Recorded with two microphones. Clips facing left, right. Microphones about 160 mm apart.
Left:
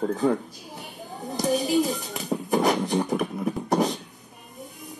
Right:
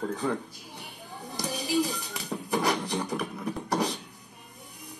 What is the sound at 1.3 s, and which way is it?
Music, 25° left (ahead or behind).